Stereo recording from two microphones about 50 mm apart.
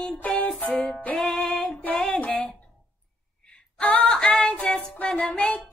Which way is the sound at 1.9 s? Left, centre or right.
Centre.